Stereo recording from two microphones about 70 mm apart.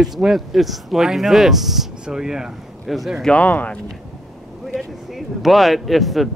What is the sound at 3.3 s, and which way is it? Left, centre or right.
Speech, left.